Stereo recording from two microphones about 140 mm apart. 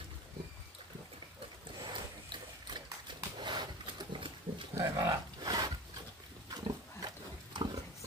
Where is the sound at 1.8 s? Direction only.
35° right (ahead or behind).